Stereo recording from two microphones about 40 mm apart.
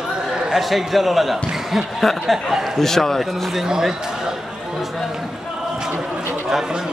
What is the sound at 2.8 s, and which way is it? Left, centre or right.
Speech, centre.